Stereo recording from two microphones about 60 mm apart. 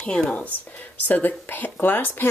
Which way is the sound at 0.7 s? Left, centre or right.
Left.